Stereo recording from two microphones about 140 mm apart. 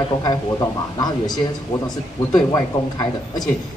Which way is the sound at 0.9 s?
30° left (ahead or behind).